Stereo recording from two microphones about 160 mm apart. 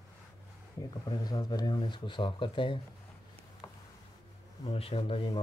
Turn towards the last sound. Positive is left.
turn(degrees=35)  # may be behind; listen again after turning